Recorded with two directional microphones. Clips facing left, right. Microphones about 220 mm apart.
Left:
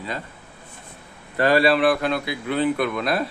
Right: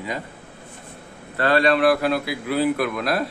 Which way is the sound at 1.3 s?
10° left (ahead or behind).